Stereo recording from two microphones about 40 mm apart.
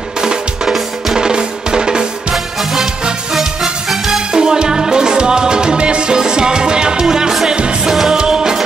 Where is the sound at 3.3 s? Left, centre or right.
Centre.